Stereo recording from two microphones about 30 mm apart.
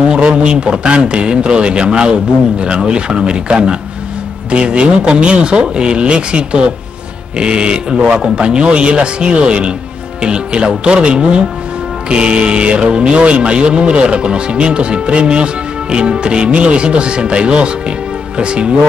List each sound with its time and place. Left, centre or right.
0.1 s speech: right